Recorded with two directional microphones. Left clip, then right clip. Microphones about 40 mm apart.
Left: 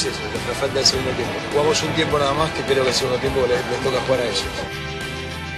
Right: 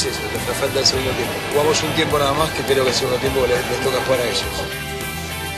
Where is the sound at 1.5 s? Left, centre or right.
Left.